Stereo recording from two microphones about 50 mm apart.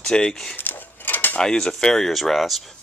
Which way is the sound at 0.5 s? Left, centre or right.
Left.